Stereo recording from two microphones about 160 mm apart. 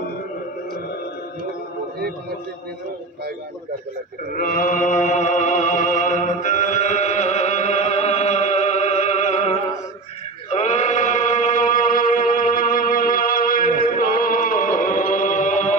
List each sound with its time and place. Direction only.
4.3 s chant: 60° left (ahead or behind); by 9.6 s 40° left (ahead or behind)
10.5 s music: 45° left (ahead or behind)